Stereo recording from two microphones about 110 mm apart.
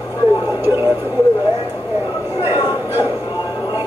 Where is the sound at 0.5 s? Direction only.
20° right (ahead or behind).